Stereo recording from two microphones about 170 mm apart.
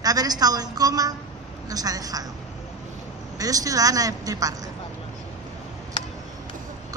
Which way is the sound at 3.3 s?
20° right (ahead or behind).